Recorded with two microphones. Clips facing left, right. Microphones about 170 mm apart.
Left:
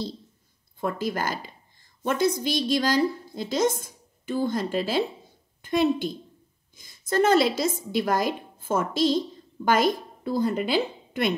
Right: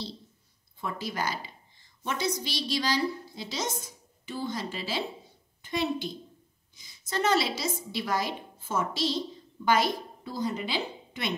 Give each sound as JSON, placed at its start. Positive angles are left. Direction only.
{"t": 0.7, "sound": "a woman's voice", "side_deg": 50}